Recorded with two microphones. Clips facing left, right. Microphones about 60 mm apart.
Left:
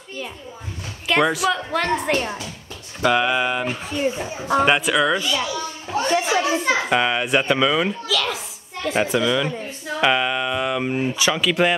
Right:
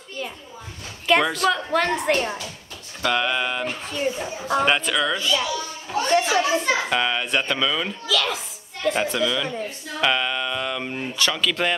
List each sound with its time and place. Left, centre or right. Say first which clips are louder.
1.0 s a woman's voice: even; centre
8.1 s a woman's voice: even; centre